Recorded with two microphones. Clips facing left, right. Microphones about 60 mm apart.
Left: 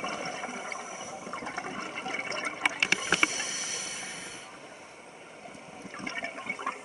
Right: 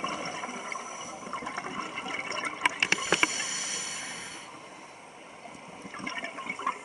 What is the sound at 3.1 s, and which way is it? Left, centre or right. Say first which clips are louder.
Boat: even; centre.